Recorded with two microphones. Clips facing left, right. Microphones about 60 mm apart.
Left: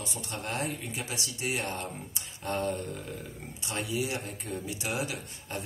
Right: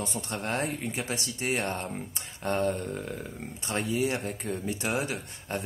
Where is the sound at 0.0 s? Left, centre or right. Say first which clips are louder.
Right 4 dB; right.